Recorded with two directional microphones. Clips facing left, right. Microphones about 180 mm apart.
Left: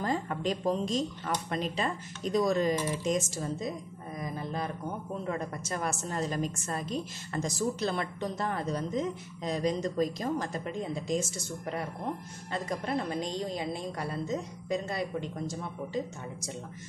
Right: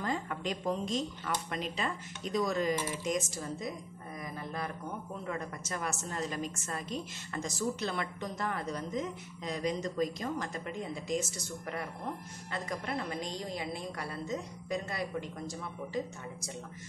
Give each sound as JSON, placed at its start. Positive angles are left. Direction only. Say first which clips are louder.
{"t": 0.0, "sound": "speech", "louder": "left 4 dB", "side_deg": 35}
{"t": 14.7, "sound": "speech", "louder": "left 3 dB", "side_deg": 25}